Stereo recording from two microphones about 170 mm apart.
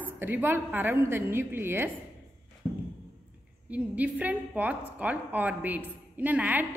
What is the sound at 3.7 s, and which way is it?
A woman's voice, 5° right (ahead or behind).